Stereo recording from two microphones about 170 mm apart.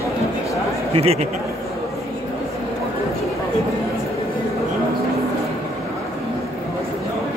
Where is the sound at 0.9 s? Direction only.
35° right (ahead or behind).